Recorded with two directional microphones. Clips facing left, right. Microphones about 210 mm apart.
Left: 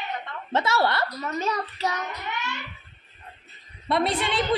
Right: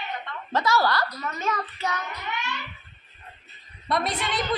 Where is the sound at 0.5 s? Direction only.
25° left (ahead or behind).